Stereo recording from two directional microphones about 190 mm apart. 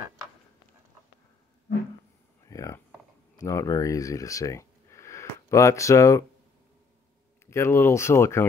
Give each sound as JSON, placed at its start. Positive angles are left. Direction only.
{"t": 2.4, "sound": "a sound", "side_deg": 15}
{"t": 3.3, "sound": "speech", "side_deg": 15}
{"t": 7.4, "sound": "speech", "side_deg": 15}